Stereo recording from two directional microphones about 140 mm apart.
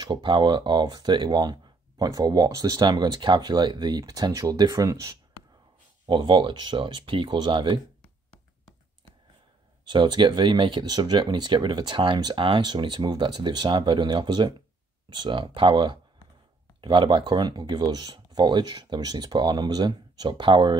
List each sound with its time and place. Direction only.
0.0 s speech: 35° right (ahead or behind)
9.8 s speech: 35° right (ahead or behind)